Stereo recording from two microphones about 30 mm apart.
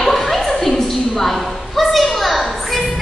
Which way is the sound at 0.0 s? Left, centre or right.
Centre.